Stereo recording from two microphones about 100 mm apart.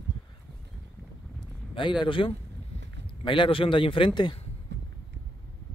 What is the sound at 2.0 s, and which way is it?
Speech, 60° left (ahead or behind).